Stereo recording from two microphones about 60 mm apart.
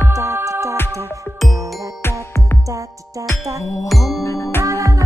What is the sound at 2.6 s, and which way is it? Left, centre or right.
Music, right.